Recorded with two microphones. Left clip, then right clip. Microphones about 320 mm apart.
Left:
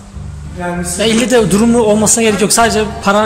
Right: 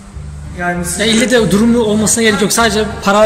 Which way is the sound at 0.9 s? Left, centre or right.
Centre.